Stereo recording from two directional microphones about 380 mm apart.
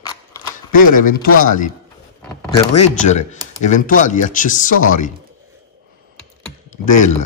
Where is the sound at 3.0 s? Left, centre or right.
Centre.